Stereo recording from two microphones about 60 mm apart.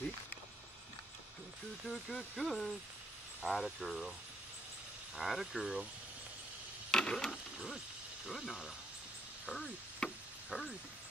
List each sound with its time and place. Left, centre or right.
1.9 s speech: centre
5.1 s speech: centre
6.9 s a sound: centre
7.5 s a sound: centre
8.3 s speech: centre
10.0 s chop: centre
10.5 s speech: centre